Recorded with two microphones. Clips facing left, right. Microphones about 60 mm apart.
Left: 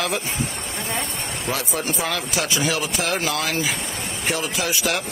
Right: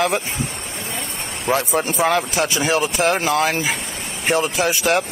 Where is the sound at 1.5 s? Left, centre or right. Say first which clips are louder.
Right 7 dB; right.